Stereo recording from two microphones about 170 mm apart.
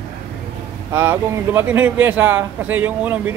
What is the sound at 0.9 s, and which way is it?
Speech, 15° right (ahead or behind).